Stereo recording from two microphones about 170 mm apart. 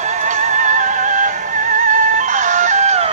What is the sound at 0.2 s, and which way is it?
Music, 45° right (ahead or behind).